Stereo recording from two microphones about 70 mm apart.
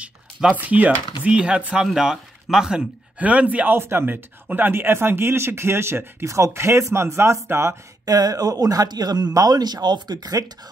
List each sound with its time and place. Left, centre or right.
0.0 s speech: centre
3.2 s speech: centre; by 7.7 s right
8.0 s speech: right